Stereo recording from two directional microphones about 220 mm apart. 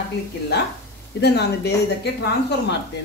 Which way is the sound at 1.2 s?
50° left (ahead or behind).